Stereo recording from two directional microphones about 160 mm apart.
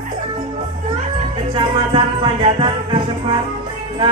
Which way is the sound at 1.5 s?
30° right (ahead or behind).